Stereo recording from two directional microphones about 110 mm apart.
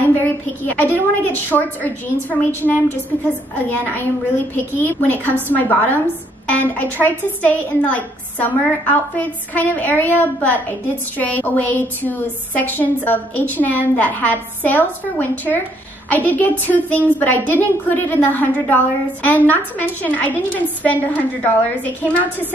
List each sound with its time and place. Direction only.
0.0 s a woman's voice: 15° left (ahead or behind)